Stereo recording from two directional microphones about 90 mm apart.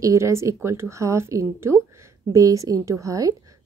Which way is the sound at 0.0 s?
35° right (ahead or behind).